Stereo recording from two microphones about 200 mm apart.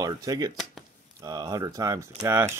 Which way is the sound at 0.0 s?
15° right (ahead or behind).